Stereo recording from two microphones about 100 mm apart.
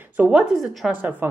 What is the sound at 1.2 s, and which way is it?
Speech, 20° right (ahead or behind).